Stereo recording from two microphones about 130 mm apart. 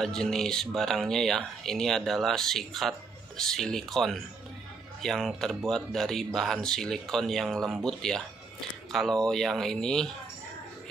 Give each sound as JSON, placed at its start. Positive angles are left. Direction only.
{"t": 0.0, "sound": "speech", "side_deg": 5}